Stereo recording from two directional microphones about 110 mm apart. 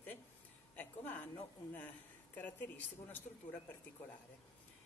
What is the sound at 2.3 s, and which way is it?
Speech, 15° left (ahead or behind).